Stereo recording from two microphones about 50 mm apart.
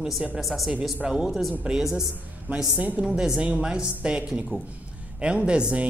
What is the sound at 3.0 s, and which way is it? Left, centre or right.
A man's voice, centre.